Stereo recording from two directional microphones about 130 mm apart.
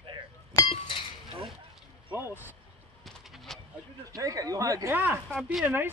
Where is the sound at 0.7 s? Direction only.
40° left (ahead or behind).